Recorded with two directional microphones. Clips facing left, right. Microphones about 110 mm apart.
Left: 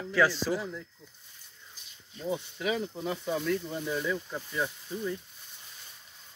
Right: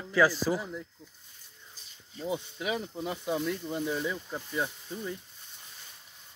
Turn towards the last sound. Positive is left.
turn(degrees=-15)  # may be behind; listen again after turning